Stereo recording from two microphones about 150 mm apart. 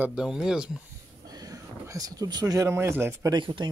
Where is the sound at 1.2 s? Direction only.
25° right (ahead or behind).